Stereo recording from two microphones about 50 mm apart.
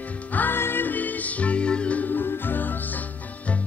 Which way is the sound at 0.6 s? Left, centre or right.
Left.